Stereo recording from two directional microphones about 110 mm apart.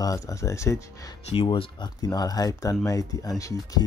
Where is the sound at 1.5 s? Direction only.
45° left (ahead or behind).